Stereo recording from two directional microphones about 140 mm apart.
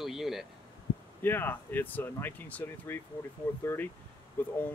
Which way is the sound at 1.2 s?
15° left (ahead or behind).